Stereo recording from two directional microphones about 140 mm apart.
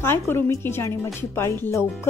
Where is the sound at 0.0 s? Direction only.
15° left (ahead or behind).